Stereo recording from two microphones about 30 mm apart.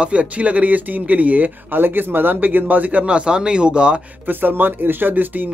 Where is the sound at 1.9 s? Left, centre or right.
Right.